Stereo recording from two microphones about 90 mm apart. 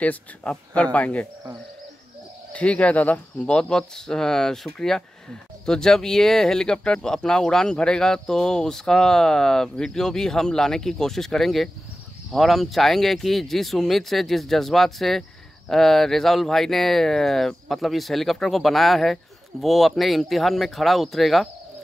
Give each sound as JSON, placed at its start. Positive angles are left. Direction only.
{"t": 0.0, "sound": "speech", "side_deg": 15}
{"t": 2.5, "sound": "speech", "side_deg": 15}